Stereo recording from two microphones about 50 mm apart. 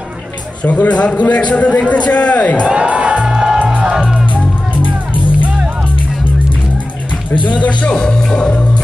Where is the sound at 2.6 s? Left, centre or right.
Right.